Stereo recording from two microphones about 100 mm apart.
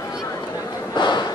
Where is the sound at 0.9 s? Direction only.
45° left (ahead or behind).